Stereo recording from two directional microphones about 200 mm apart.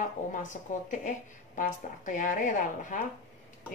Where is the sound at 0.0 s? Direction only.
40° left (ahead or behind).